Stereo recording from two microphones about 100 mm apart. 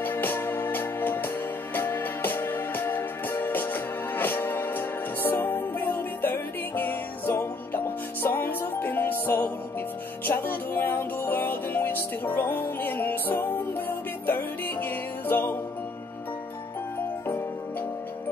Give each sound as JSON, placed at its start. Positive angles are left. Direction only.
{"t": 0.0, "sound": "music", "side_deg": 20}